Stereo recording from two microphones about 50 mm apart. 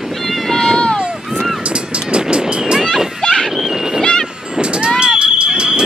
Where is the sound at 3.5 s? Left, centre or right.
Centre.